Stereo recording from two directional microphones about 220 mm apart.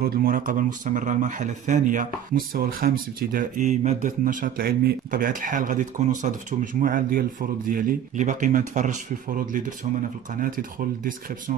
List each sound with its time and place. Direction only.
0.0 s speech: 40° right (ahead or behind)